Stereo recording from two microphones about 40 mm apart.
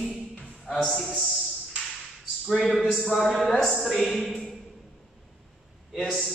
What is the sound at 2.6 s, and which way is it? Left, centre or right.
Speech, centre.